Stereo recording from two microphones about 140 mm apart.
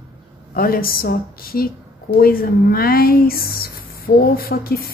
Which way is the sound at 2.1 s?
90° left.